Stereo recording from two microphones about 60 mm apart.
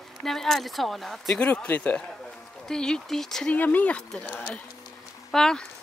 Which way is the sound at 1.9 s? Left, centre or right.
Centre.